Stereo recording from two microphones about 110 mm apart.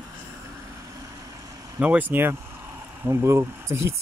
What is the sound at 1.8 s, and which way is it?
Speech, 15° right (ahead or behind).